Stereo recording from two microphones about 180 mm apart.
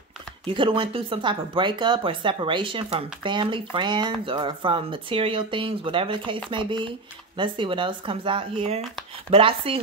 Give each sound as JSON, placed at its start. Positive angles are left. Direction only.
{"t": 0.5, "sound": "speech", "side_deg": -30}